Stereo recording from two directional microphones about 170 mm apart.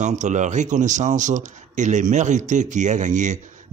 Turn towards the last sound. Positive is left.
turn(degrees=-45)  # may be behind; listen again after turning